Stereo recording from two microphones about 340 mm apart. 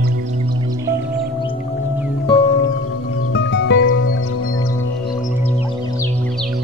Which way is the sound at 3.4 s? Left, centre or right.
Left.